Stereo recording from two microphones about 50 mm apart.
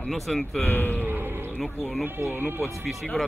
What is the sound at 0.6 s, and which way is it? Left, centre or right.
Speech, left.